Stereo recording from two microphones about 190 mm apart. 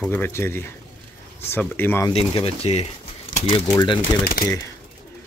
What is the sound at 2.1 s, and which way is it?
Speech, 30° left (ahead or behind).